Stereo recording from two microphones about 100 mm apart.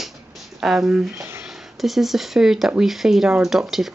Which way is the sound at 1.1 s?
25° right (ahead or behind).